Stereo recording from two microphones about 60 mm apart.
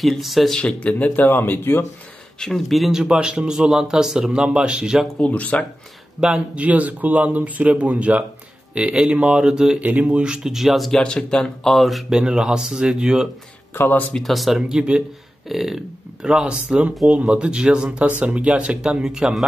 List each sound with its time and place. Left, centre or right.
0.0 s speech: centre
0.6 s speech: centre
1.4 s speech: left
2.4 s speech: centre
2.9 s speech: centre
5.2 s speech: left
6.2 s speech: centre
9.8 s speech: right
10.2 s speech: centre
10.9 s speech: centre
12.2 s speech: centre
13.7 s speech: left
14.1 s speech: centre
16.4 s speech: right